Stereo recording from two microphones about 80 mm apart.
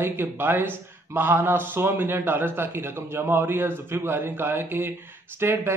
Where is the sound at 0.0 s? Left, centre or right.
Right.